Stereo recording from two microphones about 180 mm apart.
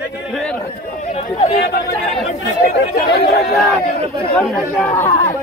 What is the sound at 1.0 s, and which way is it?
Speech, 35° left (ahead or behind).